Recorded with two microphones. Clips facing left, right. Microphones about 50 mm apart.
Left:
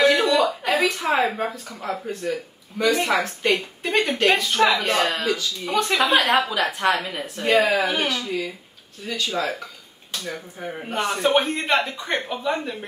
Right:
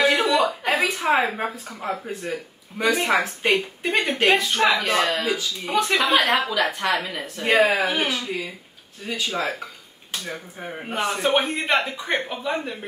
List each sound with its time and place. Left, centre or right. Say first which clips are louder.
0.2 s a sound: left 1 dB; centre
0.8 s speech: right 1 dB; centre
3.8 s speech: left 2 dB; centre
7.4 s speech: even; centre
8.2 s speech: left 2 dB; centre